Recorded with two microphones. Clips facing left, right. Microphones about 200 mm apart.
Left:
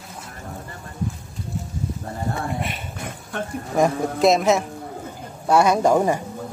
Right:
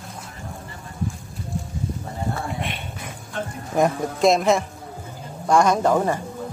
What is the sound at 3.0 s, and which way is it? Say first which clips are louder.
Mechanisms: left 3 dB; 55° left (ahead or behind).